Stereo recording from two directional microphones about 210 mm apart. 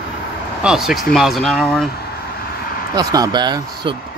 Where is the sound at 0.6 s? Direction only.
Centre (ahead or behind).